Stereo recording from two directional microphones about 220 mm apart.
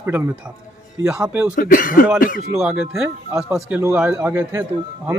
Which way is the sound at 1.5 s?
40° left (ahead or behind).